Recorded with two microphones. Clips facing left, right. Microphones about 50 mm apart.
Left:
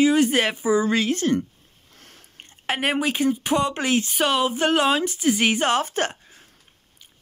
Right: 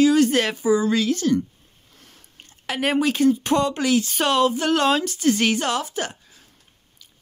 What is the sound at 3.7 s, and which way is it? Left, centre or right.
Speech, left.